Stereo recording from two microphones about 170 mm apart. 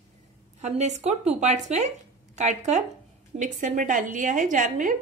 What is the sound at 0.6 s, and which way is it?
A woman's voice, 40° right (ahead or behind).